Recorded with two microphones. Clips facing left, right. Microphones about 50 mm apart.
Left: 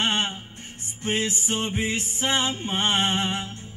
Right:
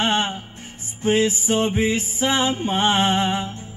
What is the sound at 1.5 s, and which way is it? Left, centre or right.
Mantra, right.